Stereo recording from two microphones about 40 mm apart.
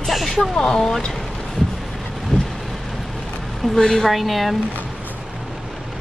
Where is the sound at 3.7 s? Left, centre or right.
Centre.